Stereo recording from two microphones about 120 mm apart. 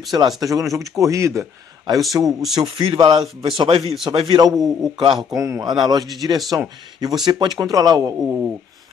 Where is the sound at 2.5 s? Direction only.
40° right (ahead or behind).